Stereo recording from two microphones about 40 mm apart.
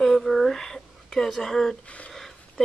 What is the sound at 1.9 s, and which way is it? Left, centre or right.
Speech, left.